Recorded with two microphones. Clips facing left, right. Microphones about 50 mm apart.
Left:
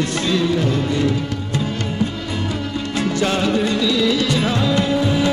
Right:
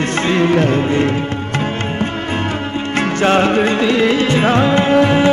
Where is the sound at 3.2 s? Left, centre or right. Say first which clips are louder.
Right 7 dB; right.